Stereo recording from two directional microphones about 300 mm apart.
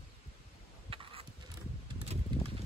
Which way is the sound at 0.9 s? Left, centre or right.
Centre.